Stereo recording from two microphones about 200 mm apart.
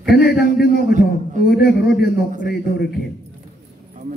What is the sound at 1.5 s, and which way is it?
Speech, 55° left (ahead or behind).